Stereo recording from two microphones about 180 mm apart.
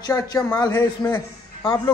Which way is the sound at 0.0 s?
20° left (ahead or behind).